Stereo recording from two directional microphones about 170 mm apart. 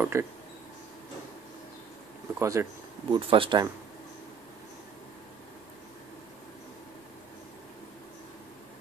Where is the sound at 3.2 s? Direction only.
30° right (ahead or behind).